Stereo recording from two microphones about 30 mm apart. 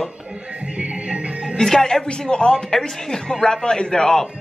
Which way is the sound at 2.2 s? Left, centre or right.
Left.